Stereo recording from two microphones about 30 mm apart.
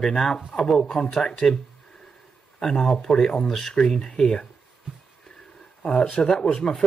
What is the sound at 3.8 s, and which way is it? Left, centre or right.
Speech, left.